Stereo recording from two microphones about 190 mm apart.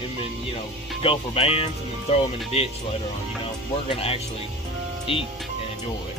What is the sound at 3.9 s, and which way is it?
Speech, 30° left (ahead or behind).